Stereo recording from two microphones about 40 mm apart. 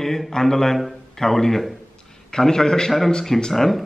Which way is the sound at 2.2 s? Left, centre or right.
Centre.